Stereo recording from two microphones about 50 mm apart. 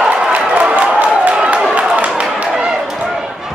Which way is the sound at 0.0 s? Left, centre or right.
Right.